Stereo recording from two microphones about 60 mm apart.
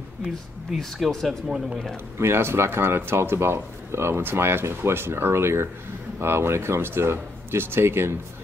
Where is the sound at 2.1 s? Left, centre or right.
Right.